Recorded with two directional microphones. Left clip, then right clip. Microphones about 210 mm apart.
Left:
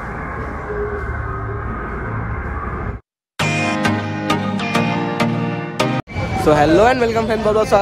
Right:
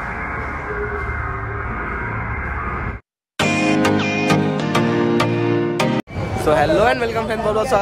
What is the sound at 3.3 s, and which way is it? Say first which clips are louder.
Music: right 1 dB; centre (ahead or behind).